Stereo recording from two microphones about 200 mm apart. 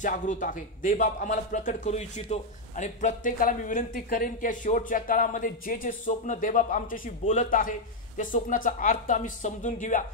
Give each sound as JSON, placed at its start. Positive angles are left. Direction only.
{"t": 0.0, "sound": "speech", "side_deg": 40}